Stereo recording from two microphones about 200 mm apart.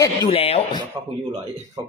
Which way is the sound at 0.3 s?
30° left (ahead or behind).